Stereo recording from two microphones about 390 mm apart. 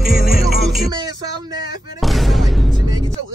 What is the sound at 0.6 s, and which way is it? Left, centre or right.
Music, centre.